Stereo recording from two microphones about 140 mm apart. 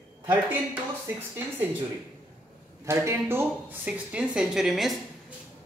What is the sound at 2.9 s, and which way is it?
Speech, 20° right (ahead or behind).